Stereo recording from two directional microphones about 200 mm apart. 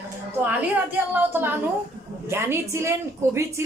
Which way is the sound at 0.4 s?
10° right (ahead or behind).